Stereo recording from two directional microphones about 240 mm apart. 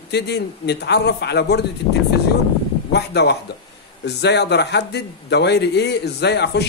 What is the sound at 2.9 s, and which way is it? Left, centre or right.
A man's voice, left.